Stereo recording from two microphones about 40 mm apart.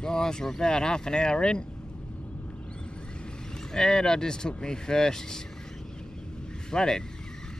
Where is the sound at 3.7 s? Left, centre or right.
Centre.